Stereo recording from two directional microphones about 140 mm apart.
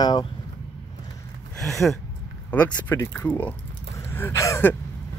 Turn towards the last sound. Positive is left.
turn(degrees=20)  # may be behind; listen again after turning